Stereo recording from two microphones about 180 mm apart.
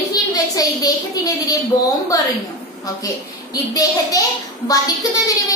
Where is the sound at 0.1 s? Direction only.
20° left (ahead or behind).